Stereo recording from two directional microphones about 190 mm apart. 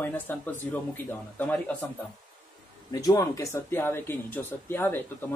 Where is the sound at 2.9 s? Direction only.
20° left (ahead or behind).